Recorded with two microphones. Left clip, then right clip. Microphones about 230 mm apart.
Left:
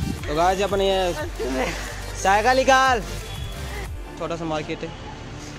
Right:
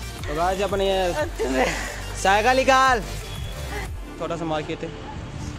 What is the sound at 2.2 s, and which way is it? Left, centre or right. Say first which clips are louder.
Speech: even; centre.